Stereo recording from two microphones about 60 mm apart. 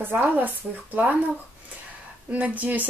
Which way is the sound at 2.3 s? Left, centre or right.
Right.